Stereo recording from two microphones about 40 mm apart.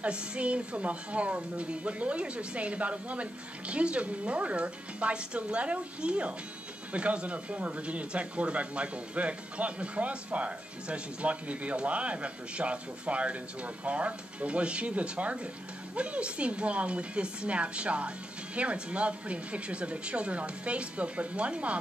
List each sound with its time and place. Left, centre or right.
0.0 s speech: right